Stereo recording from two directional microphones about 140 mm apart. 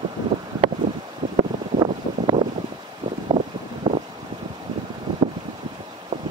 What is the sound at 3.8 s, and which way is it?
Vehicle, 30° right (ahead or behind).